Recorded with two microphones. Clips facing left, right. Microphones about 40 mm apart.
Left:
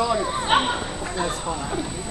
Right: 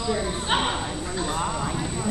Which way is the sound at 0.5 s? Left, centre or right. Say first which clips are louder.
Left 4 dB; centre.